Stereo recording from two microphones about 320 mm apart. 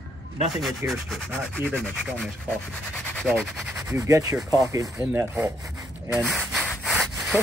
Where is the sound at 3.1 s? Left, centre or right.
Centre.